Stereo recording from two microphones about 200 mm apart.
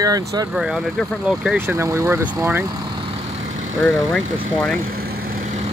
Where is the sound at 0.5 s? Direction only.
Centre (ahead or behind).